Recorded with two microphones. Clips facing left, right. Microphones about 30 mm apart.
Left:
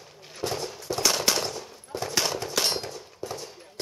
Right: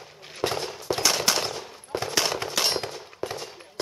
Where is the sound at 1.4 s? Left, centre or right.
Right.